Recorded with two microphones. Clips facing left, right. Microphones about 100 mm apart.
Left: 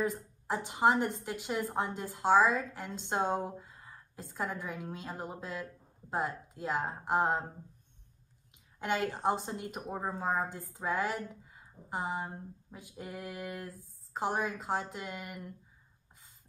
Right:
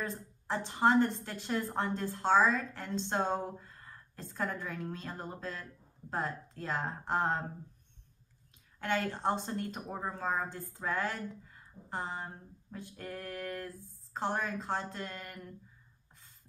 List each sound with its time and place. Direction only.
0.0 s a woman's voice: 10° left (ahead or behind)
8.7 s a woman's voice: 15° left (ahead or behind)